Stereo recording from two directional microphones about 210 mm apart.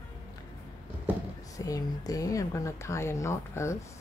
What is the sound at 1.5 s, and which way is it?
Speech, 15° left (ahead or behind).